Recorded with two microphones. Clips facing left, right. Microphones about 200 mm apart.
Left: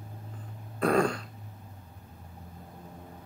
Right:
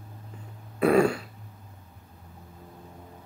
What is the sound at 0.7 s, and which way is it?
Throat clearing, 5° right (ahead or behind).